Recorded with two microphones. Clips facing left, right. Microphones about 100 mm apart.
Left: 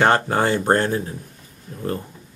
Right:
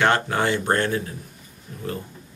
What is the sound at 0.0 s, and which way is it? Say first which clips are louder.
Speech: left 3 dB; 40° left (ahead or behind).